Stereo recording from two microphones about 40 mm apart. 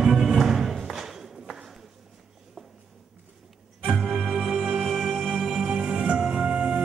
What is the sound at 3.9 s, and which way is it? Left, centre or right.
Music, centre.